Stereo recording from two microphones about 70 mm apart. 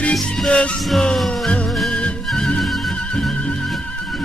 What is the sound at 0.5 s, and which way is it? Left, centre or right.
Music, centre.